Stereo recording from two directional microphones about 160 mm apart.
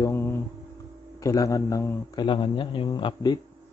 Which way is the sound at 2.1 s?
30° left (ahead or behind).